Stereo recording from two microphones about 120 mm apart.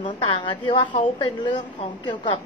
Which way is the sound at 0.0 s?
40° left (ahead or behind).